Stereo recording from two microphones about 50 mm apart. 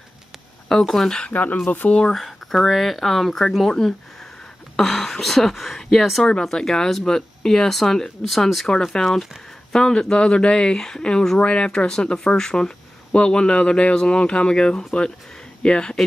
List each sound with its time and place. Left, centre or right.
0.7 s speech: centre
1.2 s speech: left
2.1 s speech: centre